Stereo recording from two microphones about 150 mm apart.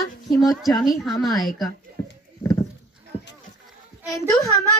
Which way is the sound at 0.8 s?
Centre (ahead or behind).